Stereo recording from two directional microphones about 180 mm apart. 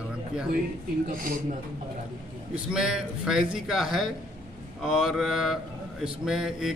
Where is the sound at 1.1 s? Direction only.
50° right (ahead or behind).